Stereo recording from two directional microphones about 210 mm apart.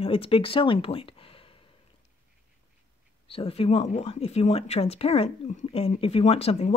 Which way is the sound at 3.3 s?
25° left (ahead or behind).